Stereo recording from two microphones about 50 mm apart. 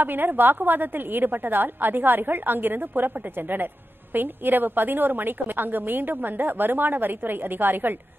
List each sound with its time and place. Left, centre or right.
0.0 s a woman's voice: right